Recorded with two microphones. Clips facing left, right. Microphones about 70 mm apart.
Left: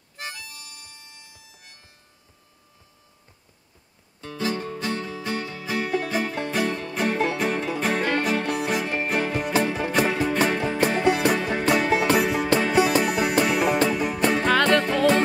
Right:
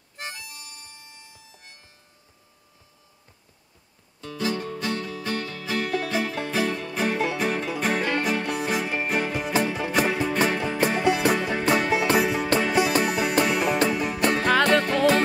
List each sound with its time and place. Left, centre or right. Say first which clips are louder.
0.2 s harmonica: even; right
4.2 s music: even; left; by 15.2 s centre